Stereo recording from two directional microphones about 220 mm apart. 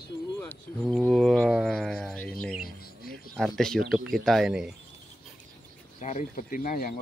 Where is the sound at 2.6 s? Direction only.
45° left (ahead or behind).